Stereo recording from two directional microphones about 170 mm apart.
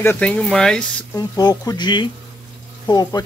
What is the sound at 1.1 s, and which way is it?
Speech, 20° left (ahead or behind).